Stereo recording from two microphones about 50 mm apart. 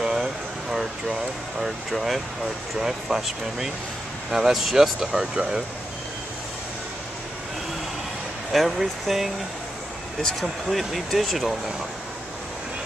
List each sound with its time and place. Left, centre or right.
0.0 s a sound: centre
2.8 s speech: centre
5.3 s speech: right
8.5 s speech: centre